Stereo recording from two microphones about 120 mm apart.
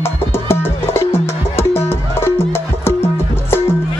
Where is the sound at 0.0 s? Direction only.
20° left (ahead or behind).